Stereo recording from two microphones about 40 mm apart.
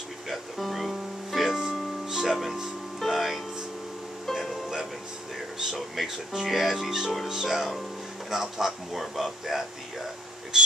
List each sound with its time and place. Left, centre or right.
0.3 s music: centre
5.6 s speech: centre
10.5 s a sound: centre